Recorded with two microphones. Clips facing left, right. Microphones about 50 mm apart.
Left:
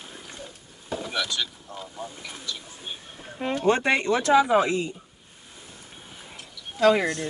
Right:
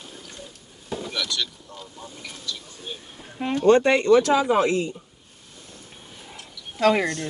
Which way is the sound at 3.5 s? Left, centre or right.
Centre.